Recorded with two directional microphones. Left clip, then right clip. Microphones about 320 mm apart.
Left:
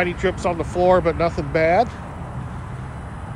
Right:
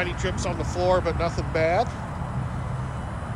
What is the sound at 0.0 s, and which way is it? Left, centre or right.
Speech, left.